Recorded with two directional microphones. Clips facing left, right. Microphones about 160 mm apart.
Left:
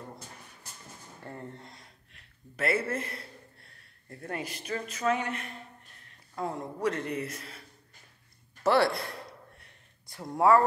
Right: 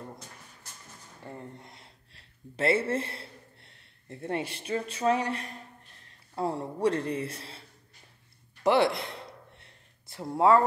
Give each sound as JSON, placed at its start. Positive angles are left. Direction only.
{"t": 1.2, "sound": "a man's voice", "side_deg": -15}
{"t": 8.6, "sound": "a sound", "side_deg": -20}
{"t": 10.3, "sound": "speech", "side_deg": -25}